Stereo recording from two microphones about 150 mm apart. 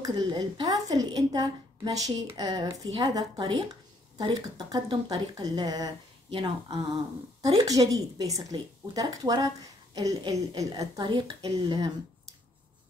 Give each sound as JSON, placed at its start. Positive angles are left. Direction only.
{"t": 0.0, "sound": "speech", "side_deg": -30}